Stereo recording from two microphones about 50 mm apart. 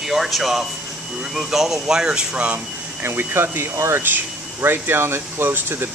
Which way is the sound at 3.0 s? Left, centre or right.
Right.